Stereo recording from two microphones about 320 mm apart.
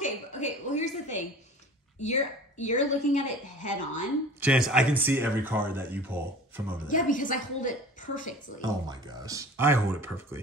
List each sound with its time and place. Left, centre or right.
0.0 s a sound: left
2.0 s a woman's voice: left
4.4 s speech: centre
6.9 s a woman's voice: left
8.5 s speech: centre